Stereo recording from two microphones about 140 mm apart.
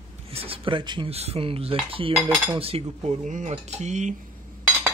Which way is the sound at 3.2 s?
65° right (ahead or behind).